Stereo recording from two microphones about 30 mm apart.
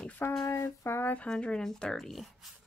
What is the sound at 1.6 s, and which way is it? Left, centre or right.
Speech, centre.